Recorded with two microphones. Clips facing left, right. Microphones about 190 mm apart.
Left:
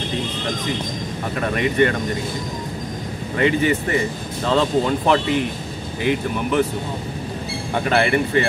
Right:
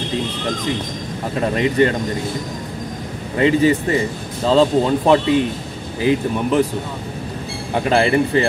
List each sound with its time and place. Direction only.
1.3 s speech: 25° right (ahead or behind)
3.3 s speech: 30° right (ahead or behind)
7.7 s speech: 30° right (ahead or behind)